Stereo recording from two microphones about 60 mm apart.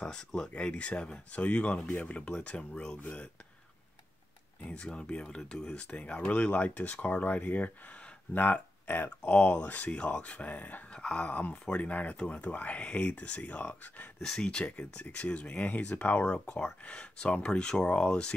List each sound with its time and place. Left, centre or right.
0.0 s speech: centre
3.0 s speech: left
4.6 s speech: left
14.2 s speech: centre
16.3 s speech: centre